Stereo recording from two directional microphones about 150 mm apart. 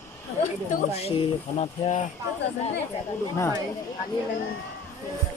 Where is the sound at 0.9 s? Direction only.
40° left (ahead or behind).